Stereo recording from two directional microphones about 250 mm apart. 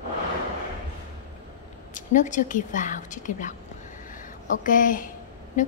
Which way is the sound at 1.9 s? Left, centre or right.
Left.